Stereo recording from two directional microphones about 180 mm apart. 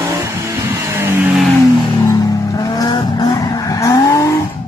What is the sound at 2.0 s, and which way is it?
Vehicle, 20° left (ahead or behind).